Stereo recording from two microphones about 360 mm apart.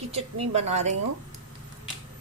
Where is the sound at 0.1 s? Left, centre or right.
Centre.